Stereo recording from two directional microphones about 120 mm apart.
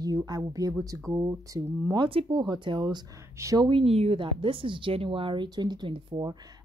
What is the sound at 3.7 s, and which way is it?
Speech, 50° right (ahead or behind).